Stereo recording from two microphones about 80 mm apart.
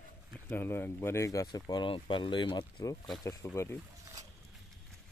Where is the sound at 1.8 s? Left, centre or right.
Left.